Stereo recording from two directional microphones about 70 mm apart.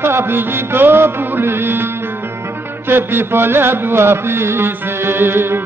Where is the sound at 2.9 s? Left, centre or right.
Right.